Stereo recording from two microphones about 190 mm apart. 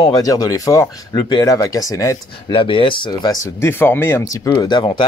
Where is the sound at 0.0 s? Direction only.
20° left (ahead or behind).